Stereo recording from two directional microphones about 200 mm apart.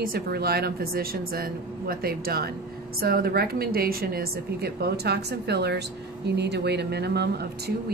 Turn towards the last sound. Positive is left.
turn(degrees=-55)  # may be behind; listen again after turning